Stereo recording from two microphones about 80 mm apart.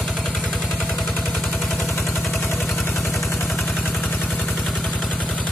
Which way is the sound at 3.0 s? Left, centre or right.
Left.